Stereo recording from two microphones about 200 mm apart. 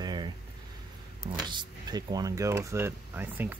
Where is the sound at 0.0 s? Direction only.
20° right (ahead or behind).